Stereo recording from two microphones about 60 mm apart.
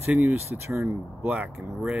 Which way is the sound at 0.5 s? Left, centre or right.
Right.